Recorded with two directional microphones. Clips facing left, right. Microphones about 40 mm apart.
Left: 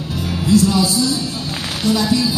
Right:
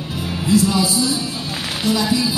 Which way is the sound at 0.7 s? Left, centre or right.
Right.